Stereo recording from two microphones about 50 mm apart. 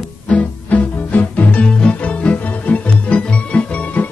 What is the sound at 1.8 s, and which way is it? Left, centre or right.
Organ, left.